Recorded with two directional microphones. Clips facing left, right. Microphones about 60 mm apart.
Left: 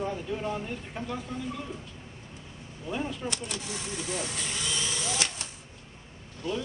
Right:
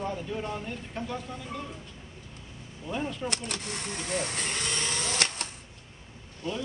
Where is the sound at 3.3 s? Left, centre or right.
Right.